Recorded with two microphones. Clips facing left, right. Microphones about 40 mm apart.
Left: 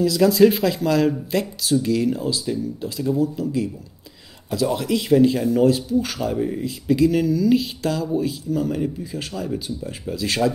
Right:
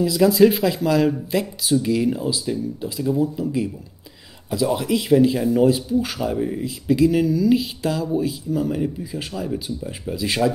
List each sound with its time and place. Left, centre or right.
0.0 s speech: centre
3.2 s speech: centre
4.5 s speech: centre